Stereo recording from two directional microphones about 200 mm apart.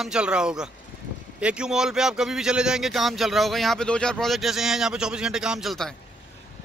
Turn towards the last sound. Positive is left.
turn(degrees=0)  # may be behind; listen again after turning